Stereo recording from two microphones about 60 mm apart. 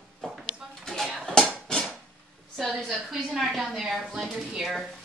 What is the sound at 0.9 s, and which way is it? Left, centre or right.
Dishes, centre.